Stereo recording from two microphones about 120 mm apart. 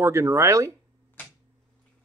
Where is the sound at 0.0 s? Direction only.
25° right (ahead or behind).